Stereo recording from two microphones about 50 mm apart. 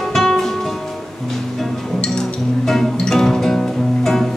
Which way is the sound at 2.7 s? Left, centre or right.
Centre.